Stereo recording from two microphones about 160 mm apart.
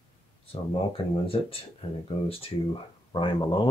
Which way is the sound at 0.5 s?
35° left (ahead or behind).